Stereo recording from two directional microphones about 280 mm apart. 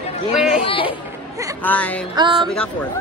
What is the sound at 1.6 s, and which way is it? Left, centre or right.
Music, centre.